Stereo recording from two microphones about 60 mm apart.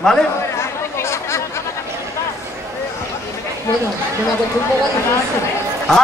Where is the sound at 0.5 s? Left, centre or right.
Left.